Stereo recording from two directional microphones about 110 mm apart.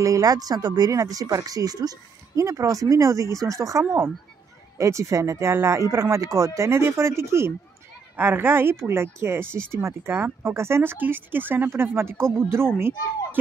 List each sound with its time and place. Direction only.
0.0 s speech: 30° right (ahead or behind)